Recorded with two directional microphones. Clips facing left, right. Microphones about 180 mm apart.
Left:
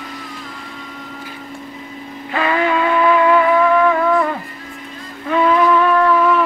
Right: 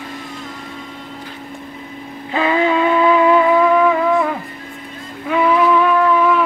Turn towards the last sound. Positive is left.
turn(degrees=-5)  # may be behind; listen again after turning